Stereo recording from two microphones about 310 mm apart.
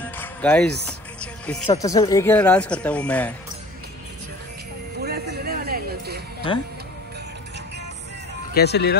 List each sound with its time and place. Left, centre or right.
0.0 s music: centre
1.7 s speech: centre
4.9 s music: right
8.5 s speech: left